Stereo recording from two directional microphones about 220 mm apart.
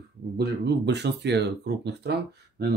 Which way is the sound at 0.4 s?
50° right (ahead or behind).